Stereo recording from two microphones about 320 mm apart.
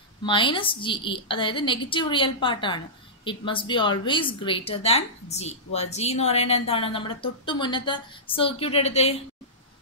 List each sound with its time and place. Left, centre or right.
0.2 s a woman's voice: centre